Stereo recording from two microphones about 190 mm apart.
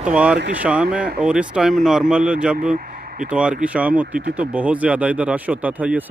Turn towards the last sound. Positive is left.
turn(degrees=-10)  # may be behind; listen again after turning